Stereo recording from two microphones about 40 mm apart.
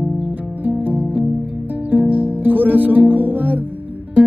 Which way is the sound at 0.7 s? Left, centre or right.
Right.